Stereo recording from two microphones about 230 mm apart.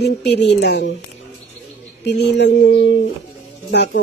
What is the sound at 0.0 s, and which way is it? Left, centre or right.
Speech, left.